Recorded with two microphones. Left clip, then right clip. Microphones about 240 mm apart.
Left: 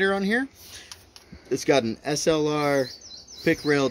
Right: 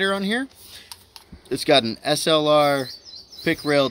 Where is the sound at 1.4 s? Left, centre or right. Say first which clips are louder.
Right 4 dB; right.